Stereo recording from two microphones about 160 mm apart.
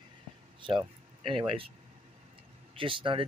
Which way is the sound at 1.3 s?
35° right (ahead or behind).